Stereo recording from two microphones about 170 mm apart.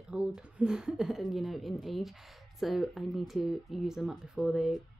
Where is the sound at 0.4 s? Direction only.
5° right (ahead or behind).